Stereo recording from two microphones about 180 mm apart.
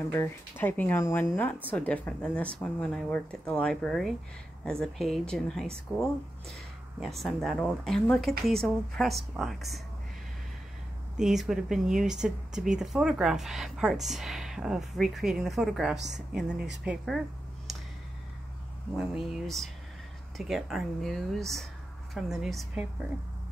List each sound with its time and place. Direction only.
0.1 s speech: 10° left (ahead or behind)
11.1 s speech: centre (ahead or behind)
18.9 s speech: 5° right (ahead or behind)